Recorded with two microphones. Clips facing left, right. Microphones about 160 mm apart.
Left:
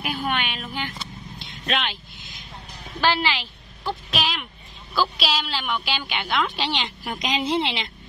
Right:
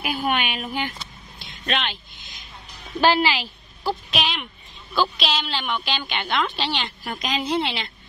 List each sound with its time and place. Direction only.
0.0 s speech: 10° right (ahead or behind)
1.4 s vehicle: centre (ahead or behind)
3.0 s a woman's voice: 15° right (ahead or behind); by 7.9 s 20° left (ahead or behind)